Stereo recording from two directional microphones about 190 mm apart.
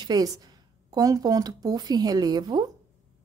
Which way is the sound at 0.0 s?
20° right (ahead or behind).